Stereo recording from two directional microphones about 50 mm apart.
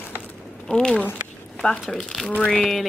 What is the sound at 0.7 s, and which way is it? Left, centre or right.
Speech, centre.